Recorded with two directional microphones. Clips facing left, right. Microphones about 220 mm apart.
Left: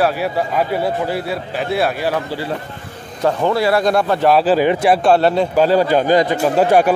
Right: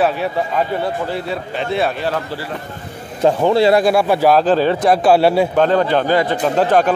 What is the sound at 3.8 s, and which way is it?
Speech, 10° right (ahead or behind).